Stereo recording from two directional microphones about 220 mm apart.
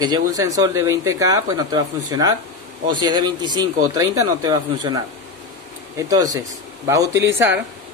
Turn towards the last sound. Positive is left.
turn(degrees=-10)  # may be behind; listen again after turning